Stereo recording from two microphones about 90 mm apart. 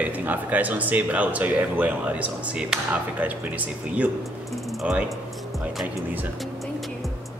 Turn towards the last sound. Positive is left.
turn(degrees=0)  # may be behind; listen again after turning